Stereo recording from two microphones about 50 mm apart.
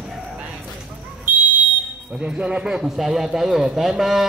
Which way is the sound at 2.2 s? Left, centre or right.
Centre.